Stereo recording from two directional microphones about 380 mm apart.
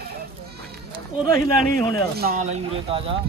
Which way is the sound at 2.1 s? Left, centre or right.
Right.